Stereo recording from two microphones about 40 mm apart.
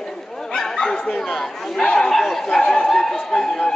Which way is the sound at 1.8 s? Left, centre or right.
Centre.